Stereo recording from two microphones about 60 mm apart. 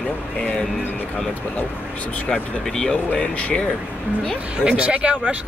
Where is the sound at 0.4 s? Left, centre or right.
Left.